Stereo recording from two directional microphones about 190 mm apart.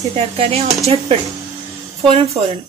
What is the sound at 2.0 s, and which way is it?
Speech, 30° right (ahead or behind).